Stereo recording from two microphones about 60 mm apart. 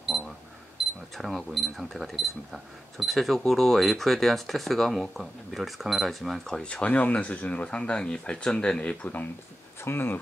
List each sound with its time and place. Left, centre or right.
0.1 s alarm clock: centre
0.7 s speech: centre; by 9.3 s left
9.8 s speech: left